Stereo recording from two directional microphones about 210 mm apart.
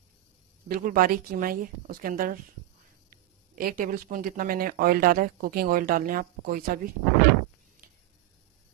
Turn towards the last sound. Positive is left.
turn(degrees=-40)  # may be behind; listen again after turning